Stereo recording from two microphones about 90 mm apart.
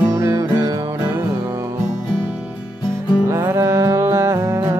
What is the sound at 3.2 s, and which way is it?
Music, 30° right (ahead or behind).